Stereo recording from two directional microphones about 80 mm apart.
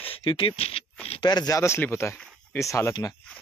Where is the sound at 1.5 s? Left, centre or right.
Left.